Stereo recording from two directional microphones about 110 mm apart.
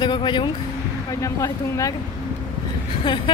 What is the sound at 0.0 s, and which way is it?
Speech, 45° left (ahead or behind).